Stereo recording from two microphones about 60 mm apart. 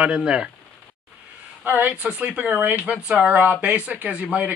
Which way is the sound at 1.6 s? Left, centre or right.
Right.